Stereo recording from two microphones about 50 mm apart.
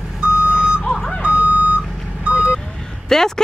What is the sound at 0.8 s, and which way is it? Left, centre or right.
Reversing beeps, centre.